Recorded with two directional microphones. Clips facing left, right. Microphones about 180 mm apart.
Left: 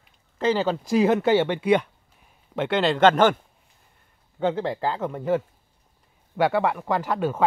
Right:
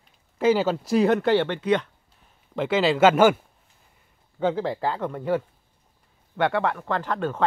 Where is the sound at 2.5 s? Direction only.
Centre (ahead or behind).